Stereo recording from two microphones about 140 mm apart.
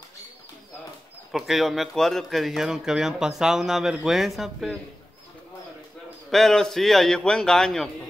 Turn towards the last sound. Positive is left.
turn(degrees=5)  # may be behind; listen again after turning